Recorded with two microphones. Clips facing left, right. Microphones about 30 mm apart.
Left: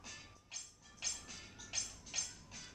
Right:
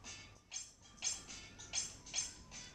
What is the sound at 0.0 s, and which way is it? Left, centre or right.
Music, centre.